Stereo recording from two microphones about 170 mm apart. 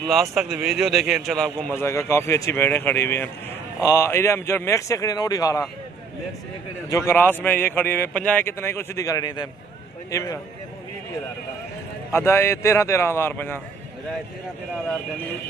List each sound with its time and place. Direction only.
0.0 s a man's voice: centre (ahead or behind); by 5.7 s 20° left (ahead or behind)
6.9 s a man's voice: 15° left (ahead or behind)
12.1 s a man's voice: 15° left (ahead or behind)